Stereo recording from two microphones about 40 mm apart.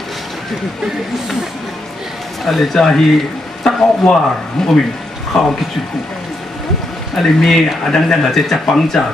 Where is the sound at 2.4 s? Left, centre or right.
Centre.